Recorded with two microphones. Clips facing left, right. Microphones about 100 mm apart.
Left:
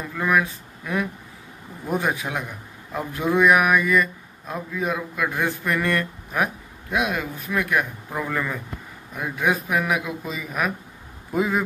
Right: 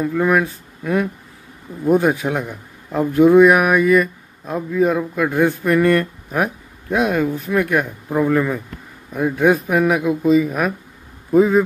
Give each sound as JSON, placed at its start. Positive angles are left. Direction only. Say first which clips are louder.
{"t": 0.0, "sound": "a man's voice", "louder": "right 6 dB", "side_deg": -30}